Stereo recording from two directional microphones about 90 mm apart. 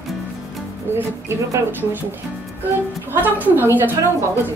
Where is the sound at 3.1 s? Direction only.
20° right (ahead or behind).